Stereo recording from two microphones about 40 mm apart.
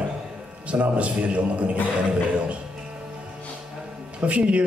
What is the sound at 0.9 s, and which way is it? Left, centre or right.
Speech, right.